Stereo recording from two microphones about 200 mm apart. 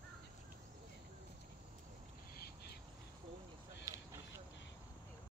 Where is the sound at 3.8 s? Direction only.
15° right (ahead or behind).